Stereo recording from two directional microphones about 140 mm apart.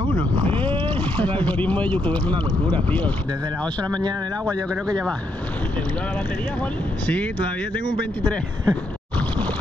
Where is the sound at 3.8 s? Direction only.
30° right (ahead or behind).